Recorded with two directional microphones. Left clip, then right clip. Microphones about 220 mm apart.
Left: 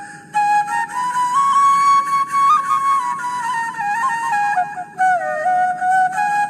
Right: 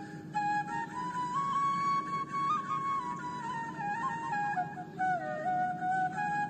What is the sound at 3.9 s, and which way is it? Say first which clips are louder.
Music: left 16 dB; 45° left (ahead or behind).